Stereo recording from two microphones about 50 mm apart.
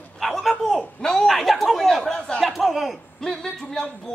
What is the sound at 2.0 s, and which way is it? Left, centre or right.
Speech, centre.